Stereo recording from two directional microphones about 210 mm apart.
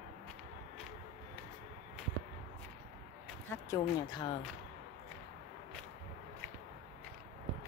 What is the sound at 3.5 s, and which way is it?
Speech, 15° left (ahead or behind).